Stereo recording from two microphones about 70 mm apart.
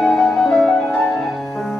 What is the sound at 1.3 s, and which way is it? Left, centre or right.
Music, centre.